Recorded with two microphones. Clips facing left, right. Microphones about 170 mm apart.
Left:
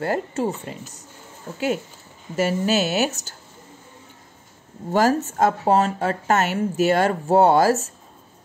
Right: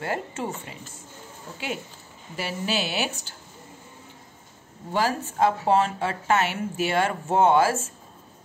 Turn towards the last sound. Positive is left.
turn(degrees=40)  # may be behind; listen again after turning